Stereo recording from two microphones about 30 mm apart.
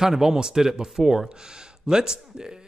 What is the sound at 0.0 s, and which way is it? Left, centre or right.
A man's voice, centre.